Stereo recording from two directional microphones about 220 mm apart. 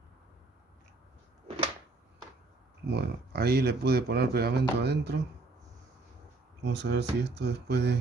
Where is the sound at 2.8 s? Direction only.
45° right (ahead or behind).